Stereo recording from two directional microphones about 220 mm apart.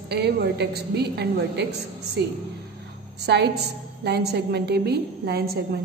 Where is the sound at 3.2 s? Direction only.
50° right (ahead or behind).